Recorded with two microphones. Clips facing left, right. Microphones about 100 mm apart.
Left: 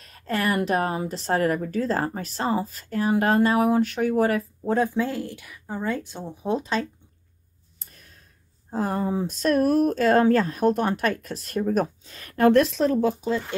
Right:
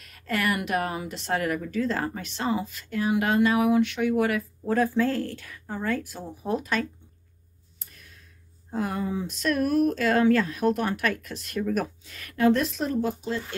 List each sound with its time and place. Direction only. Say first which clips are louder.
0.0 s a woman's voice: left 2 dB; 35° left (ahead or behind)
7.9 s a sound: even; 35° left (ahead or behind)
8.6 s a woman's voice: left 3 dB; 35° left (ahead or behind)
12.4 s a woman's voice: left 5 dB; 65° left (ahead or behind); by 12.9 s 90° left